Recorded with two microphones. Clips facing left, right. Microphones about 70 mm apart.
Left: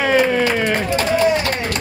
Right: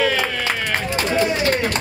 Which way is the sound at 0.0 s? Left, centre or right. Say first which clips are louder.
Left 5 dB; left.